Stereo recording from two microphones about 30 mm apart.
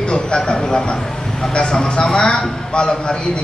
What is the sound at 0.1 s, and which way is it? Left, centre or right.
Speech, left.